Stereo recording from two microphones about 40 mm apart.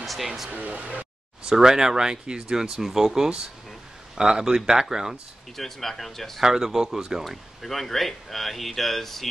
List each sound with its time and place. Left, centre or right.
0.0 s a sound: centre
0.5 s speech: right
1.4 s speech: centre
5.6 s speech: centre
6.4 s speech: centre
7.2 s speech: centre